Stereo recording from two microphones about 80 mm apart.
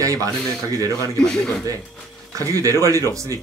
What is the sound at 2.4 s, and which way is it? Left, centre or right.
A man's voice, right.